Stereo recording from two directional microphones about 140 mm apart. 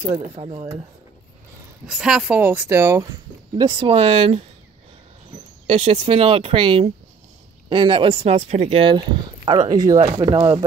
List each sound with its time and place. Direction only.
0.1 s speech: 50° right (ahead or behind)
1.9 s a woman's voice: 5° right (ahead or behind); by 3.1 s 20° right (ahead or behind)
3.5 s speech: 40° right (ahead or behind)
5.7 s speech: 45° right (ahead or behind)